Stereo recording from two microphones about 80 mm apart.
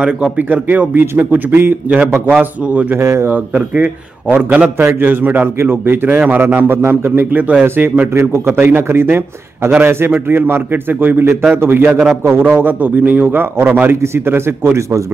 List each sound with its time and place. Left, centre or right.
0.0 s a man's voice: centre
3.0 s a man's voice: right
3.3 s a man's voice: centre; by 15.0 s right